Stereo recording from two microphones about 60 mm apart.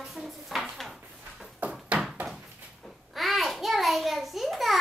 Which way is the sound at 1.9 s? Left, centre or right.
Centre.